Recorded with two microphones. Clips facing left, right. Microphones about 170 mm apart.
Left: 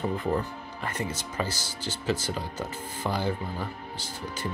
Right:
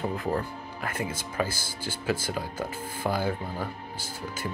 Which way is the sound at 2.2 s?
10° right (ahead or behind).